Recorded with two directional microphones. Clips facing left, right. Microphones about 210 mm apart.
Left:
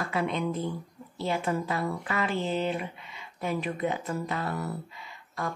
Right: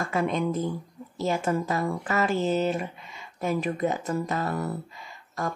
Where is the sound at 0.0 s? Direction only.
45° right (ahead or behind).